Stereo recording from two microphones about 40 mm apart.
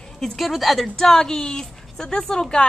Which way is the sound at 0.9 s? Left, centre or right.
Centre.